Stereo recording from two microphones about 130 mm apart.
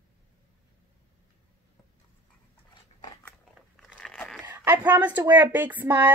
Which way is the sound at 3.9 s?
5° left (ahead or behind).